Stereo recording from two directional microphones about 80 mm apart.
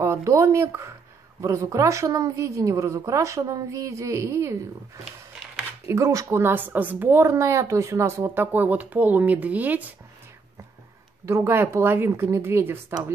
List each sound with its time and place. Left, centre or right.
0.0 s a woman's voice: right
5.9 s a woman's voice: right
6.4 s a woman's voice: right
8.2 s speech: right
11.2 s a woman's voice: right